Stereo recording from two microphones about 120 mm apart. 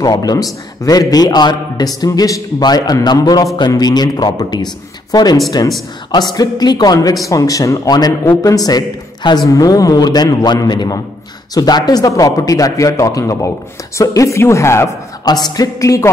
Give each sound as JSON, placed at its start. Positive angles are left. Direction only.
{"t": 0.0, "sound": "a man's voice", "side_deg": 30}
{"t": 15.2, "sound": "a man's voice", "side_deg": 35}